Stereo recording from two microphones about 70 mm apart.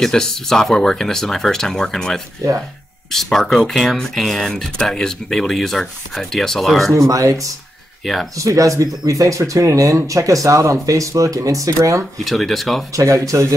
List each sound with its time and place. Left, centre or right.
0.0 s speech: centre
7.0 s speech: right
8.0 s speech: centre
8.5 s speech: right
12.3 s speech: centre
12.9 s speech: right